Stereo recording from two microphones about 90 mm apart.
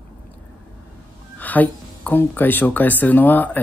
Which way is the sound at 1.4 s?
20° left (ahead or behind).